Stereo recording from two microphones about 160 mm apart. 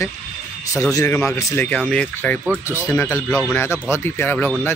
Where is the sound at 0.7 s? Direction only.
20° left (ahead or behind).